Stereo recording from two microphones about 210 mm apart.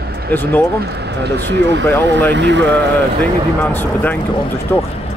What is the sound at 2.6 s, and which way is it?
Speech, 10° left (ahead or behind).